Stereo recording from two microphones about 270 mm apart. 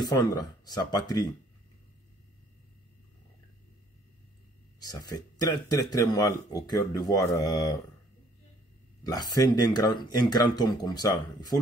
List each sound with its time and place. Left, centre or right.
0.0 s speech: centre
4.7 s speech: centre
9.0 s speech: centre